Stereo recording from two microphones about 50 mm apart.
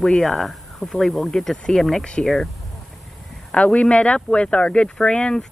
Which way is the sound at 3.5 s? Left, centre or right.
Centre.